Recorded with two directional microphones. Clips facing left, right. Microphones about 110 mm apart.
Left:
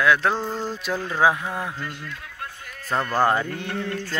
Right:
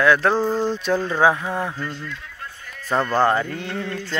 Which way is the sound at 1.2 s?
5° left (ahead or behind).